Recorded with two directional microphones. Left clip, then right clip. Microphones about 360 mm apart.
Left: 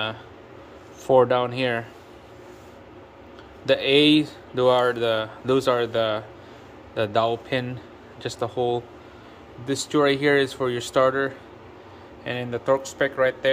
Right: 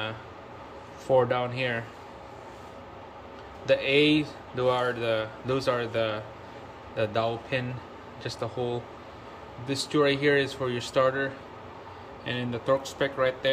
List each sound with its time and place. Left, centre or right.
1.1 s speech: centre
3.6 s speech: centre